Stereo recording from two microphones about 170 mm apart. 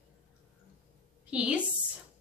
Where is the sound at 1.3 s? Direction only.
5° right (ahead or behind).